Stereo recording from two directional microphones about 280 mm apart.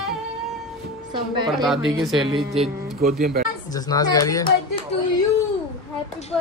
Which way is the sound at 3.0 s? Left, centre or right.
Right.